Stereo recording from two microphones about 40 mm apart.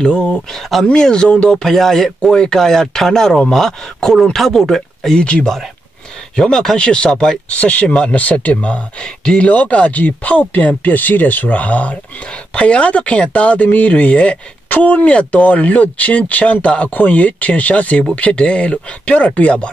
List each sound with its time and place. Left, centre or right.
0.0 s speech: left
0.5 s speech: centre
0.9 s speech: centre
1.7 s speech: centre
5.1 s speech: left
6.3 s speech: centre
6.8 s speech: left
7.4 s speech: left
7.9 s speech: left
8.2 s speech: left
9.0 s speech: left
9.5 s speech: left
14.7 s speech: left